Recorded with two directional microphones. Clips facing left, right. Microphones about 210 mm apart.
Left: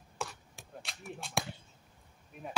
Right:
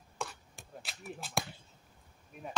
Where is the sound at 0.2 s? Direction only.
Centre (ahead or behind).